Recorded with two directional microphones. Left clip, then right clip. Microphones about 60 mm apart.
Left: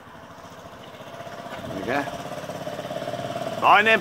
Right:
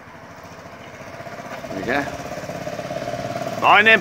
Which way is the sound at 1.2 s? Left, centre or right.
Left.